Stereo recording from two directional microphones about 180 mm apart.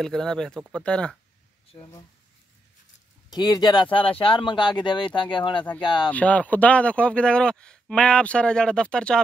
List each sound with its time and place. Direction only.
0.0 s speech: 5° left (ahead or behind)
3.3 s speech: 25° left (ahead or behind)
6.0 s speech: 10° left (ahead or behind)